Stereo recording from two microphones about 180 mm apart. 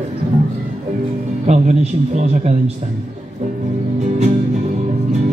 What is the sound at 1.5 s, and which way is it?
Speech, 40° right (ahead or behind).